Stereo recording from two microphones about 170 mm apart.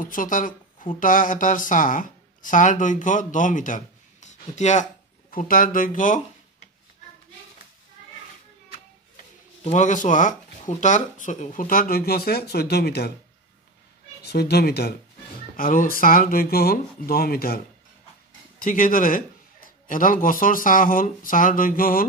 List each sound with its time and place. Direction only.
0.0 s speech: 55° left (ahead or behind)
5.3 s speech: 55° left (ahead or behind)
9.1 s speech: 45° left (ahead or behind); by 13.1 s 70° left (ahead or behind)
14.2 s speech: 70° left (ahead or behind)
15.5 s speech: 55° left (ahead or behind)
18.6 s speech: 55° left (ahead or behind)